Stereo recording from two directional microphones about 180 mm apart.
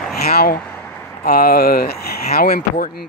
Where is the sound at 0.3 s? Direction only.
55° left (ahead or behind).